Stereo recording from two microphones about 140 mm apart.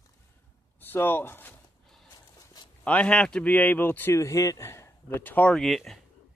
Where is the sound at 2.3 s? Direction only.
30° left (ahead or behind).